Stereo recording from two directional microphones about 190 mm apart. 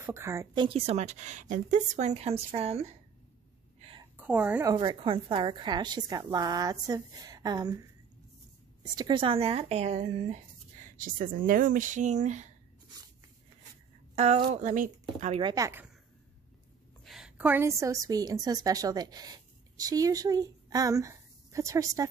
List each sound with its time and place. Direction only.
0.0 s a woman's voice: 15° right (ahead or behind)
0.7 s speech: 35° right (ahead or behind)
4.0 s a sound: 10° right (ahead or behind)
4.7 s a woman's voice: 25° right (ahead or behind)
8.9 s speech: 25° right (ahead or behind)
11.0 s speech: 45° right (ahead or behind)
14.1 s speech: 35° right (ahead or behind)
15.4 s a woman's voice: 20° right (ahead or behind)
17.0 s a woman's voice: centre (ahead or behind)